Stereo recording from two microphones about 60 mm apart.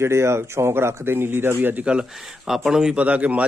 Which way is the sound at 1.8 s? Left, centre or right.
Centre.